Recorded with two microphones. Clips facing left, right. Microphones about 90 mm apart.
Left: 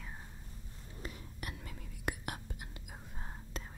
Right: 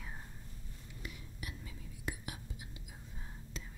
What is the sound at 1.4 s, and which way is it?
Whispering, 60° left (ahead or behind).